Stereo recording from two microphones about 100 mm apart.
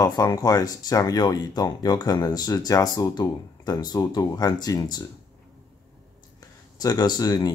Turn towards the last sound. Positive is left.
turn(degrees=40)  # may be behind; listen again after turning